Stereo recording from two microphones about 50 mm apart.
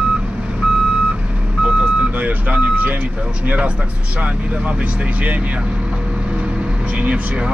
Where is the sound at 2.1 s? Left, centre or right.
Right.